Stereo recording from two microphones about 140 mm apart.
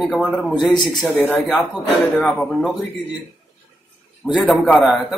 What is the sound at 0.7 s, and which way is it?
Speech, 30° left (ahead or behind).